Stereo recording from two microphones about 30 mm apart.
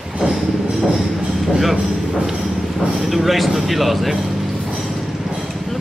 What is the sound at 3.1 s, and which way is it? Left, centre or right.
Speech, centre.